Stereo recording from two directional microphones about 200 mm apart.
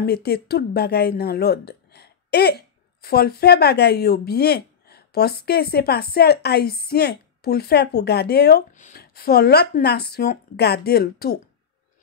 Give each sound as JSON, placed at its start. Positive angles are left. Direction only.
{"t": 0.0, "sound": "speech", "side_deg": 55}